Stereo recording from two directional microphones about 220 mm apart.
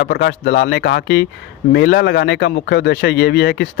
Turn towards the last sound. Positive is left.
turn(degrees=50)  # may be behind; listen again after turning